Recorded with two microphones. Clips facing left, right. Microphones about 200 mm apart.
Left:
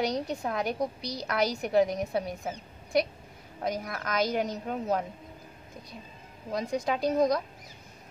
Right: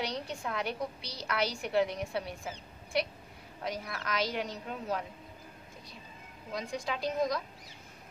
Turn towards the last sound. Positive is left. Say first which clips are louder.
# left 6 dB
turn(degrees=45)  # may be behind; listen again after turning